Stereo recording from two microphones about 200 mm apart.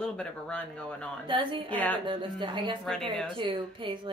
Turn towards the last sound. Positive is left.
turn(degrees=-25)  # may be behind; listen again after turning